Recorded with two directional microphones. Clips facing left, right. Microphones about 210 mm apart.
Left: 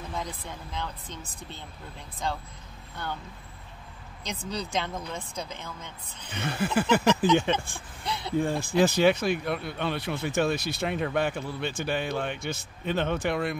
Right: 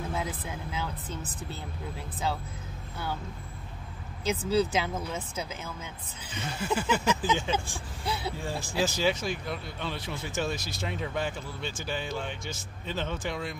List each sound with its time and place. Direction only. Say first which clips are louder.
0.1 s speech: right 2 dB; 5° right (ahead or behind)
4.2 s speech: right 8 dB; 5° right (ahead or behind)
6.3 s speech: left 4 dB; 60° left (ahead or behind)
7.5 s speech: right 1 dB; 5° right (ahead or behind)
8.4 s speech: left 11 dB; 55° left (ahead or behind)